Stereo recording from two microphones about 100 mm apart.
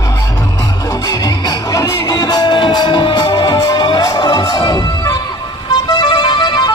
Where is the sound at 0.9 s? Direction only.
40° left (ahead or behind).